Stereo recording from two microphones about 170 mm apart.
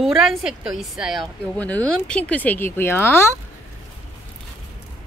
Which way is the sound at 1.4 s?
10° left (ahead or behind).